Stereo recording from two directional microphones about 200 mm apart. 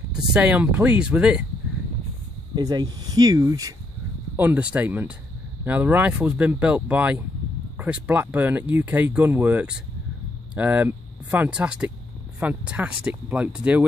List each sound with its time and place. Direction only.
0.3 s speech: 5° right (ahead or behind)
2.5 s speech: 20° right (ahead or behind); by 13.8 s 5° right (ahead or behind)